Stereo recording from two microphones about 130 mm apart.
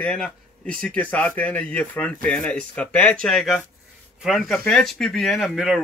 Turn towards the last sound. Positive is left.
turn(degrees=-5)  # may be behind; listen again after turning